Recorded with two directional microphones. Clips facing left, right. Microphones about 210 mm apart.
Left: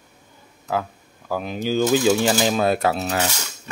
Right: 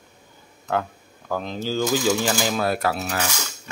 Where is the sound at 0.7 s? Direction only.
5° left (ahead or behind).